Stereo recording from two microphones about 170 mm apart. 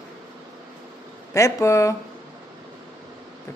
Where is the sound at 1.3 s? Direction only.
15° left (ahead or behind).